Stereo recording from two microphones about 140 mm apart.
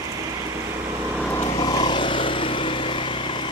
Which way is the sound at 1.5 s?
35° left (ahead or behind).